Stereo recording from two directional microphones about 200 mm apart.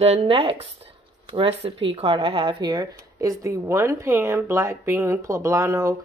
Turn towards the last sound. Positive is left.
turn(degrees=-15)  # may be behind; listen again after turning